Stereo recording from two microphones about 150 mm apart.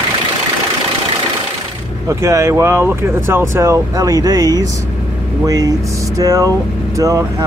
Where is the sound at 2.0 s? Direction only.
20° right (ahead or behind).